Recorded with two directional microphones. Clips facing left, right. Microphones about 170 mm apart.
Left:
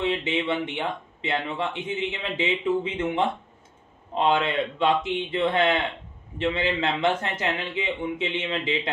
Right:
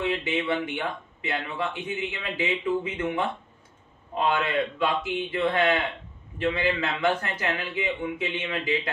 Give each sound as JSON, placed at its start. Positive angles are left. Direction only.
{"t": 0.0, "sound": "speech", "side_deg": 25}